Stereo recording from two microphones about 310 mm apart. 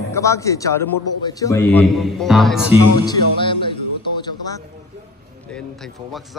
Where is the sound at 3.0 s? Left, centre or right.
Centre.